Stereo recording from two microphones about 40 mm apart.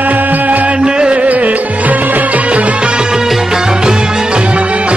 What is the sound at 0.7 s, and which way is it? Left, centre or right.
Music, right.